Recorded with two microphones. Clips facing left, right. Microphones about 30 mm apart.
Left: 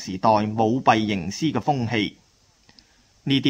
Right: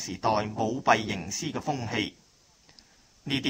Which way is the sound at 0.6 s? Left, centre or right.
Left.